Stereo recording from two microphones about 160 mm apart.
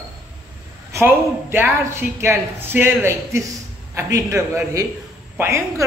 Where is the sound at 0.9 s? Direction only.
15° right (ahead or behind).